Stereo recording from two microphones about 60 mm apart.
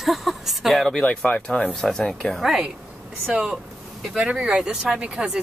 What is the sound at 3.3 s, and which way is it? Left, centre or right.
Speech, centre.